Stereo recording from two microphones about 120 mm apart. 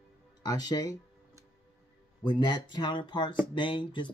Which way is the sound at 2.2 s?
40° left (ahead or behind).